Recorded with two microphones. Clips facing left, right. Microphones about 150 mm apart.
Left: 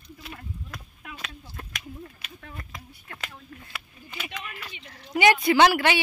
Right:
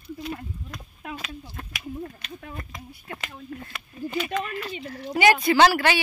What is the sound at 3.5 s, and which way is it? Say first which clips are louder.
Speech: right 9 dB; 40° right (ahead or behind).